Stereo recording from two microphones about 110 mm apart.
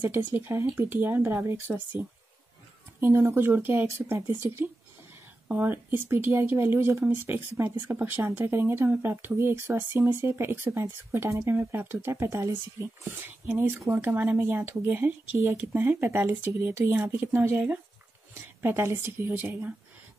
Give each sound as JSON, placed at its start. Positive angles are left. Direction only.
{"t": 0.3, "sound": "speech", "side_deg": -20}